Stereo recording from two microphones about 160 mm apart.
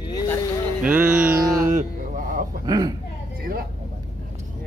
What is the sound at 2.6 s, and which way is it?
Speech, 25° right (ahead or behind).